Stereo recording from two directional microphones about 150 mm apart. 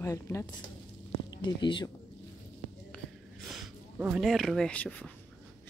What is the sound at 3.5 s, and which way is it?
Speech, 10° right (ahead or behind).